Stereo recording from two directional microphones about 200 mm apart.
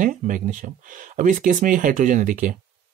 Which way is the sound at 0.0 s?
40° right (ahead or behind).